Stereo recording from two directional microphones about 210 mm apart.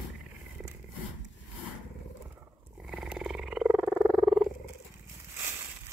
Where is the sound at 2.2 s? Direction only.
5° right (ahead or behind).